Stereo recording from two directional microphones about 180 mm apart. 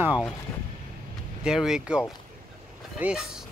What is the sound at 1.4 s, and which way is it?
Speech, 5° right (ahead or behind).